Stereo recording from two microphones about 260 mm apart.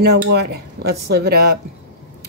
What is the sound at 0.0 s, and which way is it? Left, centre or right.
Speech, right.